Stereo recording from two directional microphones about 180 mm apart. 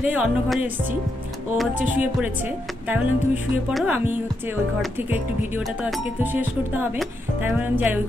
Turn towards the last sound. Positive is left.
turn(degrees=-10)  # may be behind; listen again after turning